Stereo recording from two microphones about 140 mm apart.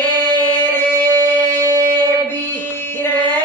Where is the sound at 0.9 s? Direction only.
30° right (ahead or behind).